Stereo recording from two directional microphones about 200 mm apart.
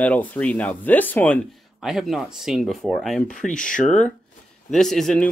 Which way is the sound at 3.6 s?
40° left (ahead or behind).